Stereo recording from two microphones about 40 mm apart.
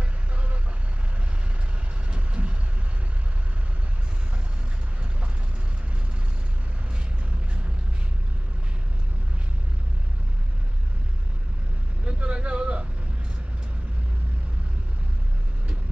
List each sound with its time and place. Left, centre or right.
2.0 s vehicle: right
12.0 s vehicle: right